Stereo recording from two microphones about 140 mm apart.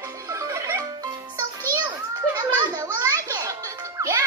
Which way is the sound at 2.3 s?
25° right (ahead or behind).